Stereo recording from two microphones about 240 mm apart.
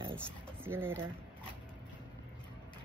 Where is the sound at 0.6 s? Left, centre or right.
Centre.